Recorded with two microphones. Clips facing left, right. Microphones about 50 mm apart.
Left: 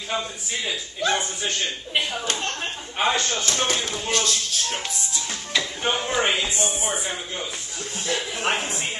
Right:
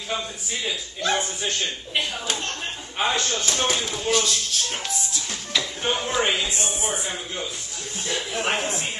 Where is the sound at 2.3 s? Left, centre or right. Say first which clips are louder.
Left 2 dB; centre.